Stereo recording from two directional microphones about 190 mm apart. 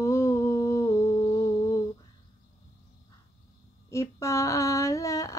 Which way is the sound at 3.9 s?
15° left (ahead or behind).